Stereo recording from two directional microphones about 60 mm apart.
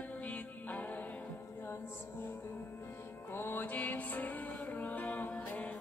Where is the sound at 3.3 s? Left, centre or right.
Left.